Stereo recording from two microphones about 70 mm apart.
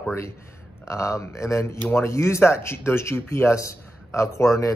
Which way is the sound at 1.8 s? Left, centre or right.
Left.